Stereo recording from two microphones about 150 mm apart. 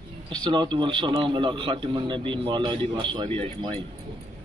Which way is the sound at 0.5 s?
30° right (ahead or behind).